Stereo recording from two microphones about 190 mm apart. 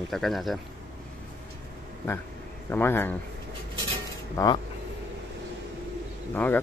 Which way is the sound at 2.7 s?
10° left (ahead or behind).